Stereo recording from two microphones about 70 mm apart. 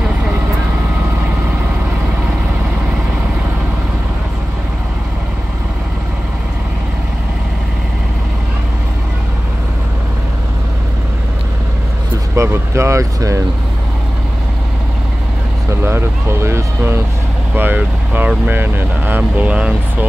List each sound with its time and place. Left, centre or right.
12.4 s vehicle: right
15.8 s vehicle: right
17.6 s vehicle: right
18.5 s speech: right